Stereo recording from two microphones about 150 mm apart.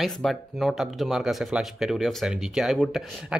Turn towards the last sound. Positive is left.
turn(degrees=0)  # may be behind; listen again after turning